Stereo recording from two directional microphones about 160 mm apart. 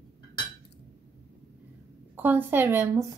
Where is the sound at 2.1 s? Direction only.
10° right (ahead or behind).